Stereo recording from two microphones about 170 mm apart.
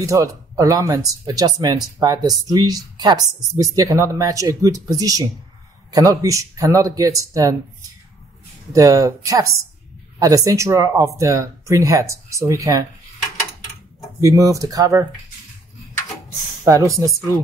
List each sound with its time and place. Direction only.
0.0 s a woman's voice: 20° right (ahead or behind)
8.7 s a woman's voice: 20° right (ahead or behind)
14.2 s a woman's voice: 20° right (ahead or behind)
16.6 s speech: 20° right (ahead or behind)